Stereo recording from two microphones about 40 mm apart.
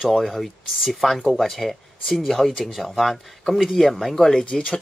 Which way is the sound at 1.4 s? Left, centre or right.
Centre.